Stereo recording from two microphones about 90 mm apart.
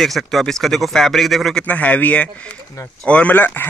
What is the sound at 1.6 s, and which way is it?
Speech, 15° left (ahead or behind).